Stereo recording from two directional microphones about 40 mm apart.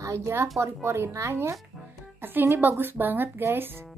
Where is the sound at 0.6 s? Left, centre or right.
Right.